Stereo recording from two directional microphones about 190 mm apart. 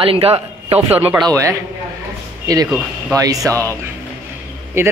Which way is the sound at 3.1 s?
20° right (ahead or behind).